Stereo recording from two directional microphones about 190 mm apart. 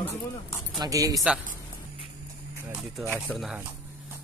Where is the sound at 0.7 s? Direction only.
15° right (ahead or behind).